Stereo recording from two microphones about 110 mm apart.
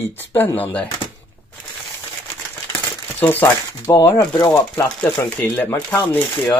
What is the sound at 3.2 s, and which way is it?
Speech, 15° left (ahead or behind).